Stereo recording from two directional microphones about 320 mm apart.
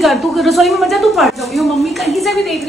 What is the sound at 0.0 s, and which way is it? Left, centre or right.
A woman's voice, centre.